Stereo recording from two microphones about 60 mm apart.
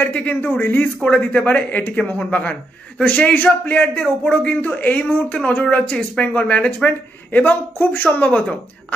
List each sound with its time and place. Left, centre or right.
0.0 s a man's voice: left